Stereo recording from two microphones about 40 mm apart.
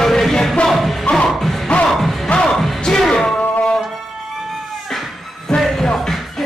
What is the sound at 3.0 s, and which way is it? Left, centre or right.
Music, centre.